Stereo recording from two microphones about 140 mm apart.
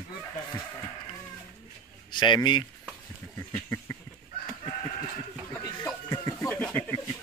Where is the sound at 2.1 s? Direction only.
35° left (ahead or behind).